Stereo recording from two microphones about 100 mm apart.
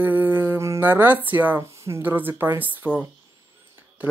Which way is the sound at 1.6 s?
25° right (ahead or behind).